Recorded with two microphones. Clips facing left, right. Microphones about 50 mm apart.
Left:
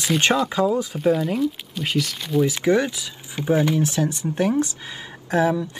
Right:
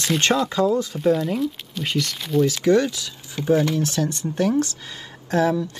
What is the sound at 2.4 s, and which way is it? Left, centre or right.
Speech, centre.